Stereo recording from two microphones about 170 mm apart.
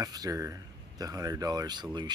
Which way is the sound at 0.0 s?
20° right (ahead or behind).